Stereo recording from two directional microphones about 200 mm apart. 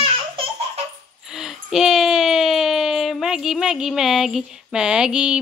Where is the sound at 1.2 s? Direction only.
Centre (ahead or behind).